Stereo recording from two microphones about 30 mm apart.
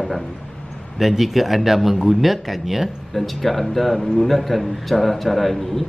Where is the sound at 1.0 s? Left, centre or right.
Centre.